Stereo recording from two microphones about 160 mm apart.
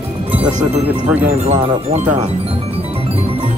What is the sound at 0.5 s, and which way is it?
Music, 45° right (ahead or behind).